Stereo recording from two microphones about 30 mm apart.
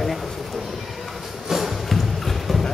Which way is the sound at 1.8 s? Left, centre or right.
Centre.